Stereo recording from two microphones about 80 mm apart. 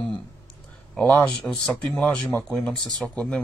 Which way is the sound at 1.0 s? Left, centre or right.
Left.